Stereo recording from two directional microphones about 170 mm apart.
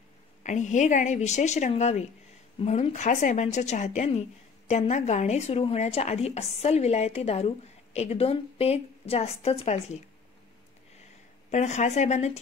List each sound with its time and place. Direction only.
0.4 s a woman's voice: 45° left (ahead or behind)
11.5 s a woman's voice: 45° left (ahead or behind)